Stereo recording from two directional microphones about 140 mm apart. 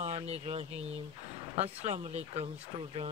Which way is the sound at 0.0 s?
50° right (ahead or behind).